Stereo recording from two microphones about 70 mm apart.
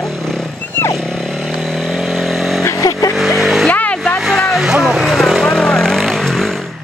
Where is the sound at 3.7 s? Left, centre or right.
Centre.